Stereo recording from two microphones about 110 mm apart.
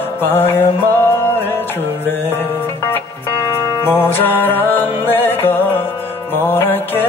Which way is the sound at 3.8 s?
20° left (ahead or behind).